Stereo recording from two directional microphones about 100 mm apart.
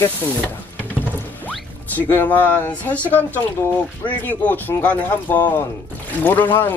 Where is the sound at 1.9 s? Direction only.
20° left (ahead or behind).